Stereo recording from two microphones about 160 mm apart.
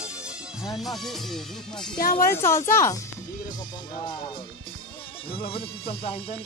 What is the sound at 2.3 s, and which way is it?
Speech, 15° left (ahead or behind).